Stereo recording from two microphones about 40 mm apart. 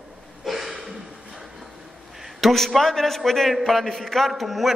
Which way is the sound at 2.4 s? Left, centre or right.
Centre.